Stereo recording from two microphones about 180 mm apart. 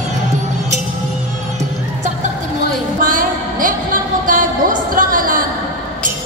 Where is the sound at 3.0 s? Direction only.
50° right (ahead or behind).